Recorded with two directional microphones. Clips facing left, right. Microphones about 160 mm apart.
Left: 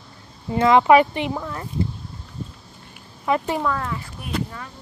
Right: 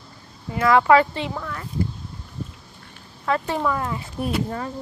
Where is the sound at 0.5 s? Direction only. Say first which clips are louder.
Left 2 dB; 25° left (ahead or behind).